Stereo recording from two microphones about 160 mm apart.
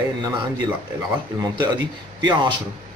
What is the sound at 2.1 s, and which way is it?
Speech, 30° right (ahead or behind).